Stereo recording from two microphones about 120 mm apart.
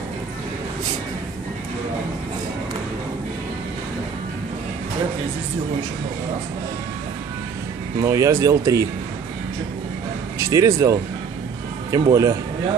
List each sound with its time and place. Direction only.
8.0 s speech: 25° right (ahead or behind)
10.4 s speech: 25° right (ahead or behind)